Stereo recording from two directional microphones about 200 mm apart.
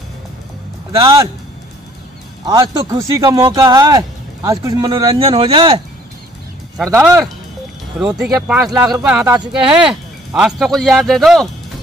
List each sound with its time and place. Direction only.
0.9 s speech: 20° right (ahead or behind)
2.4 s speech: 20° right (ahead or behind)
6.9 s speech: 15° right (ahead or behind)